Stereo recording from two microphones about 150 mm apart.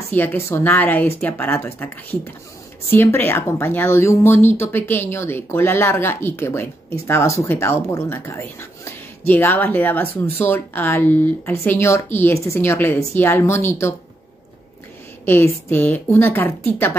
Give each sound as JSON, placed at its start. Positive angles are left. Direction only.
{"t": 0.1, "sound": "speech", "side_deg": 15}
{"t": 2.9, "sound": "speech", "side_deg": 15}
{"t": 15.2, "sound": "speech", "side_deg": 15}